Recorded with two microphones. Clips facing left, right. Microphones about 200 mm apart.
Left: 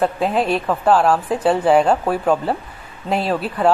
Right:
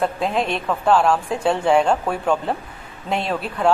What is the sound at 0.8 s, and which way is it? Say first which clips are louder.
Speech: left 1 dB; 5° left (ahead or behind).